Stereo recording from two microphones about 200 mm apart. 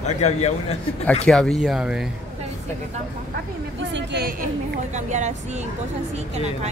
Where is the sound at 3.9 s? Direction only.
55° right (ahead or behind).